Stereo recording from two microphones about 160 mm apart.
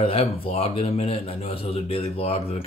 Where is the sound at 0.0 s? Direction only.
35° left (ahead or behind).